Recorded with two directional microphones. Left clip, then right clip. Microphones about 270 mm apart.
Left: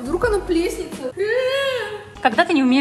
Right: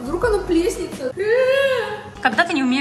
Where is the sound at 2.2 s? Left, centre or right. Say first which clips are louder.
Left 1 dB; centre.